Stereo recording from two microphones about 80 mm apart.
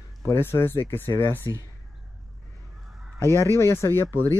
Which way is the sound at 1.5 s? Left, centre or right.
Left.